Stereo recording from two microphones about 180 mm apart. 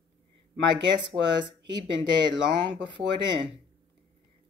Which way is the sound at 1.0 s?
25° right (ahead or behind).